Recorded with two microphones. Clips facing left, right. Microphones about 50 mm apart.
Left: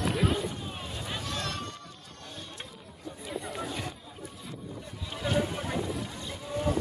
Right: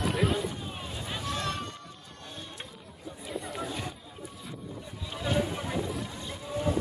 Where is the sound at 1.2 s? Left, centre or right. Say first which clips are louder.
Right 5 dB; centre.